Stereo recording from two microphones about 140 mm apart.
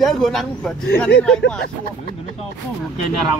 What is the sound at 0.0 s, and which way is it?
Speech, centre (ahead or behind).